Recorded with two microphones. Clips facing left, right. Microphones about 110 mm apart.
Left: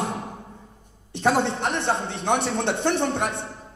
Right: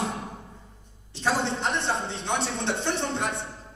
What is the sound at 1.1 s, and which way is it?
A man's voice, 60° left (ahead or behind).